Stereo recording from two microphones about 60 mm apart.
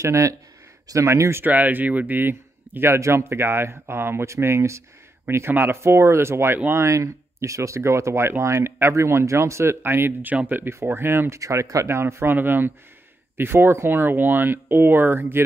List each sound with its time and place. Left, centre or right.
0.0 s speech: right
1.4 s speech: right
5.5 s speech: right
6.7 s speech: right
10.7 s speech: right
11.3 s speech: right
11.9 s speech: right